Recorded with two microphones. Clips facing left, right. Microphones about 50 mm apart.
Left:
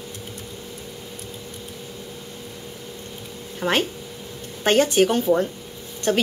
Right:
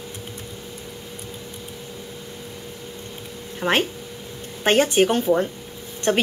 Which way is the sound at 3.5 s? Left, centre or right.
Centre.